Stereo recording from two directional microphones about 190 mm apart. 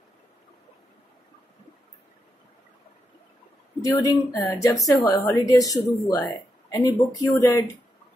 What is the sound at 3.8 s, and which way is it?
Speech, 20° left (ahead or behind).